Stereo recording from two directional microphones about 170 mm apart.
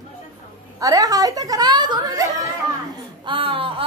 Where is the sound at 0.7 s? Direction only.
20° right (ahead or behind).